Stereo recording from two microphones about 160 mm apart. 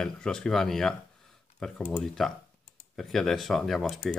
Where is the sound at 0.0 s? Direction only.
5° left (ahead or behind).